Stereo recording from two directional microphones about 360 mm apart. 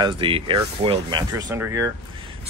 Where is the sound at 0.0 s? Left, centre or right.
Centre.